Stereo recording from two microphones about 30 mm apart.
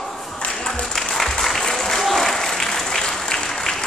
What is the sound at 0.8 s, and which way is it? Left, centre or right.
Music, centre.